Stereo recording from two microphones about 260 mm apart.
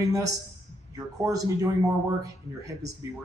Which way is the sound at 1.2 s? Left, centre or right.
Centre.